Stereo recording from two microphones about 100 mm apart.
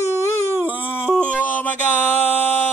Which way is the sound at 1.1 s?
15° left (ahead or behind).